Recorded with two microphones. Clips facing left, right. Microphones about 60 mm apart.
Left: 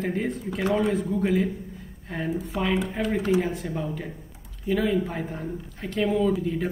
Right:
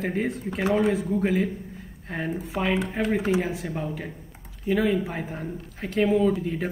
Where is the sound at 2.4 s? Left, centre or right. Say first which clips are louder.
Even; centre.